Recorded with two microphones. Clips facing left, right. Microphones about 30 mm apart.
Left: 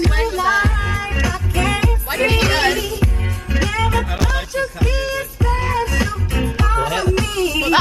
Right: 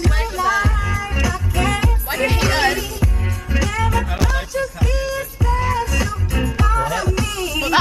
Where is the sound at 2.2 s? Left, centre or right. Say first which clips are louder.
Left 2 dB; left.